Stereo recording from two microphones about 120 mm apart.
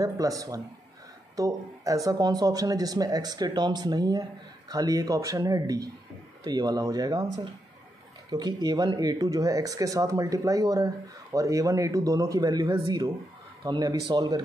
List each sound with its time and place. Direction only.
0.0 s speech: 30° right (ahead or behind)